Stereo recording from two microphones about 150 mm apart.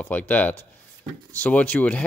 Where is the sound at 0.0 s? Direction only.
10° left (ahead or behind).